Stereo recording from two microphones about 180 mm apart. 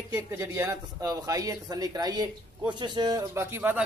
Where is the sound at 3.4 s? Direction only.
10° right (ahead or behind).